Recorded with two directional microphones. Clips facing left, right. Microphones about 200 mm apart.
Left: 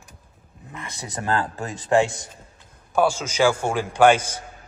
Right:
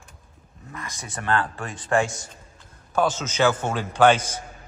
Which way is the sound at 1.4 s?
20° left (ahead or behind).